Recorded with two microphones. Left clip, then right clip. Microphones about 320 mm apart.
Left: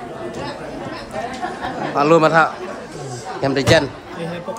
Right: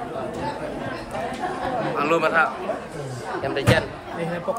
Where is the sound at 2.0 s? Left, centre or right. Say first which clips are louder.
Left 8 dB; centre.